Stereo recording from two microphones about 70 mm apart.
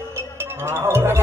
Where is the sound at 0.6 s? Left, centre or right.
Right.